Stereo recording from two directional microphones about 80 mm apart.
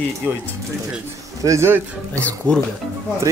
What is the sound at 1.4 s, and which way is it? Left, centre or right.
Speech, right.